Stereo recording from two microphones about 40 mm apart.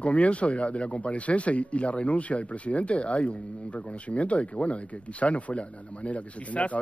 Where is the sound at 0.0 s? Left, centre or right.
Left.